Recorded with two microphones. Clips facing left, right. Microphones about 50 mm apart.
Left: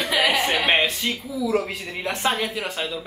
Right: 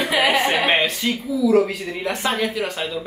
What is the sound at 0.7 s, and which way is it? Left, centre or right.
Speech, centre.